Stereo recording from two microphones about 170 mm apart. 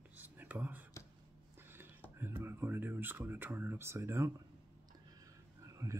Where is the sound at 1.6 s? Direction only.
15° right (ahead or behind).